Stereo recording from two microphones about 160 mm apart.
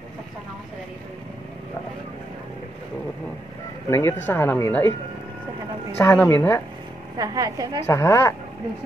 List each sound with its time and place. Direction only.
3.9 s a woman's voice: 15° left (ahead or behind)
5.9 s a woman's voice: 15° left (ahead or behind)
7.2 s a woman's voice: 20° right (ahead or behind)
7.8 s a woman's voice: 15° left (ahead or behind)